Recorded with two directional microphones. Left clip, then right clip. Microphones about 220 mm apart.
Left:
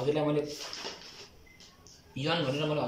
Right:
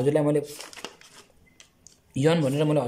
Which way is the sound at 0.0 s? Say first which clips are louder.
Right 7 dB; 35° right (ahead or behind).